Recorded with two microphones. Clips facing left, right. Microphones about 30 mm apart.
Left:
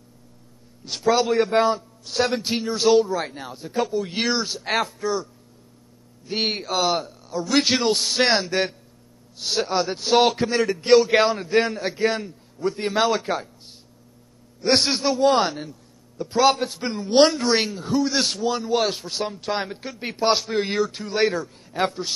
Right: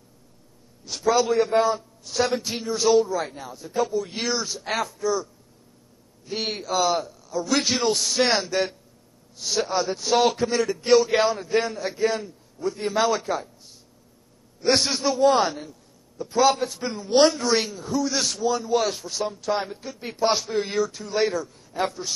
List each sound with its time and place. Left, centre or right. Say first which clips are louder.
0.8 s a man's voice: left 1 dB; left
20.7 s a man's voice: left 1 dB; left